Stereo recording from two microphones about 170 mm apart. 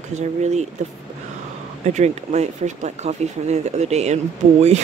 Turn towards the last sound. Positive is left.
turn(degrees=-40)  # may be behind; listen again after turning